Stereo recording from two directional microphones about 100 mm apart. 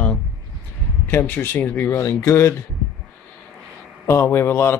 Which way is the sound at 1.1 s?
20° left (ahead or behind).